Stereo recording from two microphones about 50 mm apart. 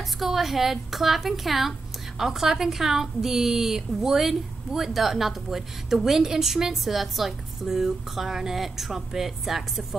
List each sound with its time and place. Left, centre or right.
0.2 s a woman's voice: centre